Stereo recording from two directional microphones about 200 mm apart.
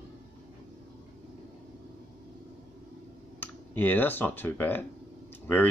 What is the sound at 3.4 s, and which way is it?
Speech, 10° left (ahead or behind).